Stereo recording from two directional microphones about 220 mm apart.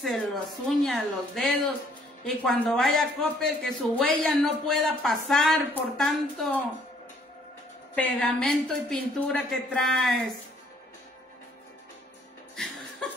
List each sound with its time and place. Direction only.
0.0 s speech: centre (ahead or behind)
7.9 s speech: 5° left (ahead or behind)
12.6 s chuckle: 5° left (ahead or behind)